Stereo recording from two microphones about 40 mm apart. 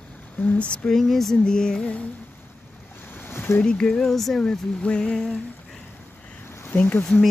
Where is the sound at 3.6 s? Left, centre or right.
Left.